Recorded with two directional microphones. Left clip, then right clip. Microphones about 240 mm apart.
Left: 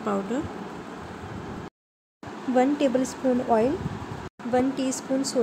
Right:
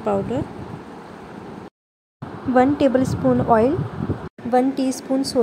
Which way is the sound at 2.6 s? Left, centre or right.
Centre.